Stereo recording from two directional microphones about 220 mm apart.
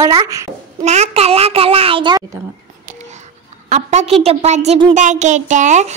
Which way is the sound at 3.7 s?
30° right (ahead or behind).